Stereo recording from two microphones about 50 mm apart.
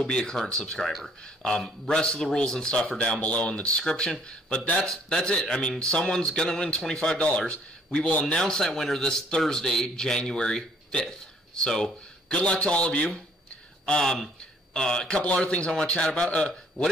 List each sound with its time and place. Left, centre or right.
0.0 s a man's voice: centre
3.7 s speech: centre
4.8 s a man's voice: centre
8.4 s a man's voice: centre
13.8 s a man's voice: centre
15.0 s a man's voice: left